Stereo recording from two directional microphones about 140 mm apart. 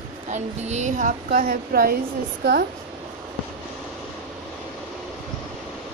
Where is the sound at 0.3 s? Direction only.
55° right (ahead or behind); by 2.0 s 90° right.